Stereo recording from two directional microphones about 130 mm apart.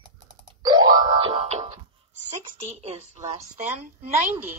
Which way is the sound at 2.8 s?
55° right (ahead or behind).